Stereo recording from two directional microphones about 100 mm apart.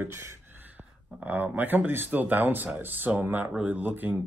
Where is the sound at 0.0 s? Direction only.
25° right (ahead or behind).